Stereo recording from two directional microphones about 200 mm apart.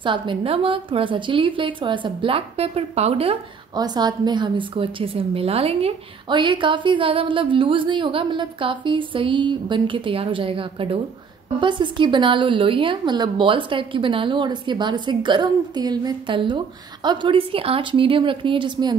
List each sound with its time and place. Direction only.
0.0 s a woman's voice: 25° right (ahead or behind)